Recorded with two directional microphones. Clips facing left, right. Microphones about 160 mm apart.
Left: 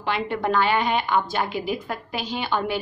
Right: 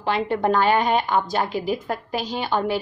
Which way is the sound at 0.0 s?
35° right (ahead or behind).